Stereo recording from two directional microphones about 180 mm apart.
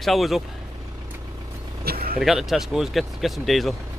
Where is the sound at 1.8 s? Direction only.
55° right (ahead or behind).